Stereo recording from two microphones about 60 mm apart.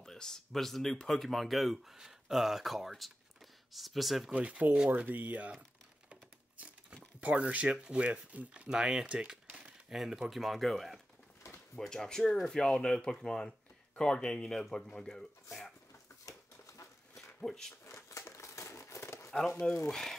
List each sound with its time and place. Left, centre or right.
0.0 s speech: centre
4.3 s speech: right
7.2 s speech: right
9.6 s speech: centre
16.3 s a sound: left
17.4 s speech: centre
17.8 s crumpling: left
19.9 s speech: centre